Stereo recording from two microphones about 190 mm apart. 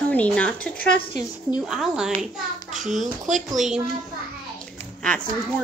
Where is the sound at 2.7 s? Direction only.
40° right (ahead or behind).